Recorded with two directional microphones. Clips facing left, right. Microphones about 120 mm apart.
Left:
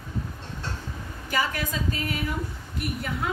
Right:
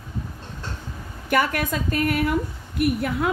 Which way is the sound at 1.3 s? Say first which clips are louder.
Right 6 dB; 60° right (ahead or behind).